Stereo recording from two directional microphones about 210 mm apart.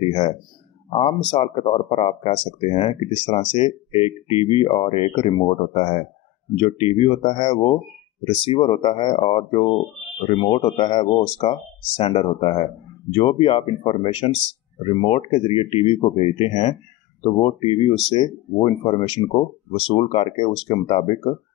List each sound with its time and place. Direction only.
0.8 s speech: 25° left (ahead or behind)